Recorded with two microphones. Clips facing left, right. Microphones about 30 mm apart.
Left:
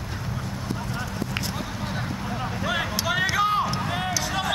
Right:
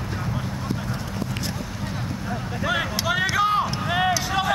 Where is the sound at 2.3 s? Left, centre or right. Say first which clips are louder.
Right 3 dB; centre.